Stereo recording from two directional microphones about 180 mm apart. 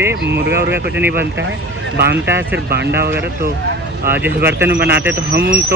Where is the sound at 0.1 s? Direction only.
75° right (ahead or behind).